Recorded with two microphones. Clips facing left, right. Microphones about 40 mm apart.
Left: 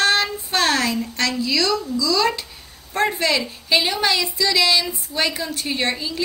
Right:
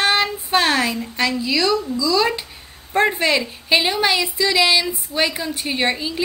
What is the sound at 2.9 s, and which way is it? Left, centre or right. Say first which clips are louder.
Female singing: right 3 dB; right.